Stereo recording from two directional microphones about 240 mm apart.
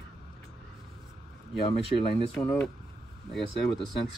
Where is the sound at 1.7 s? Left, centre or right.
Left.